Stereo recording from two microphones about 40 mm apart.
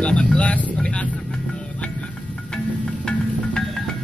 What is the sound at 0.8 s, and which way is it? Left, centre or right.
Speech, left.